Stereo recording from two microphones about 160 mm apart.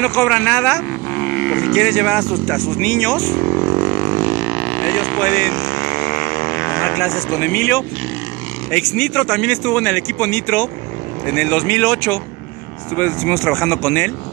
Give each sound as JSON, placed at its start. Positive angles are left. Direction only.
{"t": 0.0, "sound": "speech", "side_deg": 10}
{"t": 3.6, "sound": "vehicle", "side_deg": -35}
{"t": 4.5, "sound": "vehicle", "side_deg": 0}
{"t": 5.2, "sound": "speech", "side_deg": 10}
{"t": 5.6, "sound": "vehicle", "side_deg": 50}
{"t": 7.0, "sound": "speech", "side_deg": 15}
{"t": 8.7, "sound": "speech", "side_deg": 5}